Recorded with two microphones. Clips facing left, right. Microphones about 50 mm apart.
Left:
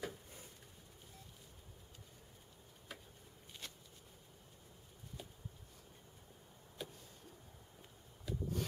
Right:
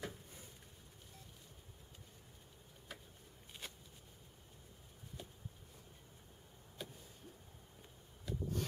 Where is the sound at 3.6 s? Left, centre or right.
Centre.